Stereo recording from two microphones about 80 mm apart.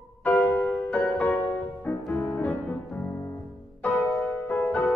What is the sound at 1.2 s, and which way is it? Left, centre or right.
Music, left.